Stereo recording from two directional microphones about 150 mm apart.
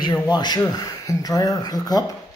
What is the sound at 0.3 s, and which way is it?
Speech, 30° left (ahead or behind).